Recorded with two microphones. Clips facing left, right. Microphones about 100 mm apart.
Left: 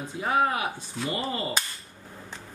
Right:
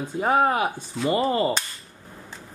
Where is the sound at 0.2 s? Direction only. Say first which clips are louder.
Right 5 dB; 40° right (ahead or behind).